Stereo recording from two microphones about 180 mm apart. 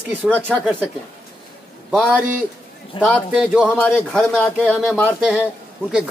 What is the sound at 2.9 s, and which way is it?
Speech, 30° left (ahead or behind).